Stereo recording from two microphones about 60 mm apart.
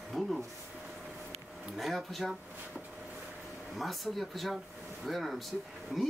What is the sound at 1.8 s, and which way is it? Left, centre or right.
Speech, centre.